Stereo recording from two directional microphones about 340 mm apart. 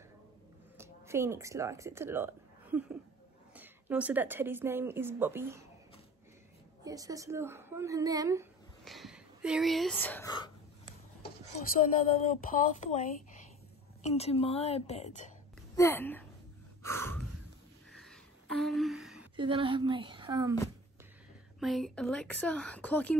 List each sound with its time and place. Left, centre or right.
0.7 s a woman's voice: centre
6.8 s a woman's voice: centre
11.6 s a woman's voice: left
15.7 s a sound: centre
19.3 s a woman's voice: centre
21.5 s speech: centre